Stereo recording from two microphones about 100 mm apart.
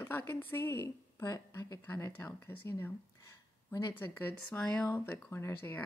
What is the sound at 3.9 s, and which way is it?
Speech, 20° left (ahead or behind).